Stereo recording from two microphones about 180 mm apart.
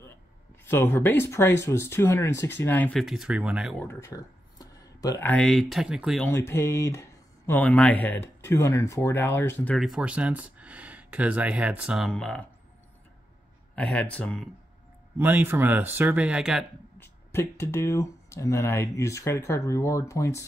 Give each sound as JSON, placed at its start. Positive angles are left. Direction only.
{"t": 0.7, "sound": "speech", "side_deg": 10}
{"t": 3.8, "sound": "speech", "side_deg": 15}
{"t": 6.2, "sound": "speech", "side_deg": 15}
{"t": 9.8, "sound": "speech", "side_deg": -5}
{"t": 13.7, "sound": "speech", "side_deg": 5}
{"t": 15.1, "sound": "speech", "side_deg": -10}
{"t": 17.0, "sound": "speech", "side_deg": 15}